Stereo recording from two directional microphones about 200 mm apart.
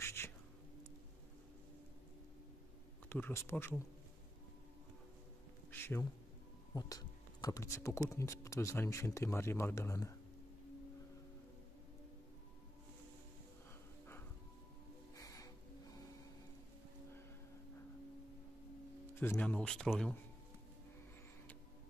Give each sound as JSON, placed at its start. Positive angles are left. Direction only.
{"t": 0.0, "sound": "a sound", "side_deg": 10}
{"t": 3.1, "sound": "speech", "side_deg": 10}
{"t": 5.7, "sound": "insect", "side_deg": 10}
{"t": 6.7, "sound": "speech", "side_deg": 20}
{"t": 15.1, "sound": "music", "side_deg": 15}
{"t": 19.1, "sound": "speech", "side_deg": 10}